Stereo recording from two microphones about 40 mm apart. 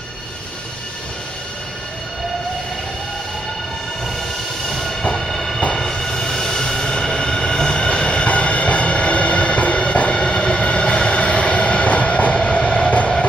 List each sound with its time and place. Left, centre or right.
4.6 s train: centre; by 13.1 s left